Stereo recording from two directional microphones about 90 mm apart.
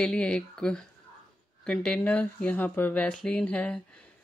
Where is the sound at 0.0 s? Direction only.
10° left (ahead or behind).